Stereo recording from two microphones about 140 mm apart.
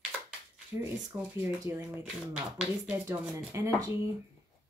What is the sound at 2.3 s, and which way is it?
Speech, 10° right (ahead or behind).